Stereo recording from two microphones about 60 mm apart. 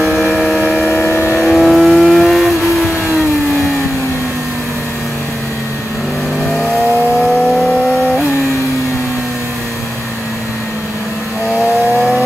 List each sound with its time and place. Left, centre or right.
0.6 s train: centre
1.0 s vehicle: left
1.4 s vehicle: centre